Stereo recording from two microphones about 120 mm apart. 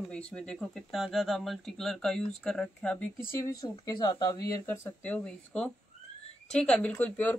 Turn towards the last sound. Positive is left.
turn(degrees=15)  # may be behind; listen again after turning